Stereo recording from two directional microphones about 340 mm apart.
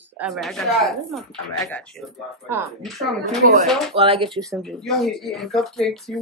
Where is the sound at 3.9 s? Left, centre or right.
Centre.